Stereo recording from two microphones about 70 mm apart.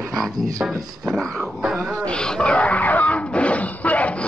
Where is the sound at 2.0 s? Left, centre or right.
Centre.